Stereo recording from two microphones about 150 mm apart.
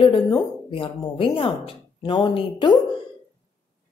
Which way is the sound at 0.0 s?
35° left (ahead or behind).